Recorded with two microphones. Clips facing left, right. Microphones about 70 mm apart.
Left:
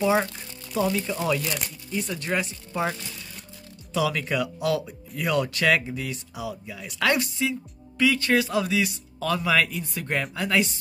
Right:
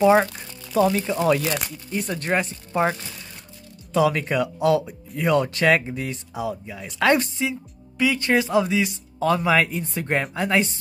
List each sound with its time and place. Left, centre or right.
0.0 s speech: right
8.0 s speech: right